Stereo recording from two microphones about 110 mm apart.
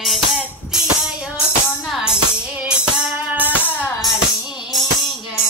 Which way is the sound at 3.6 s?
20° left (ahead or behind).